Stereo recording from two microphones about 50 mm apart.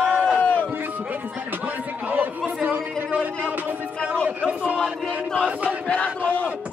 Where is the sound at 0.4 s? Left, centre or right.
Left.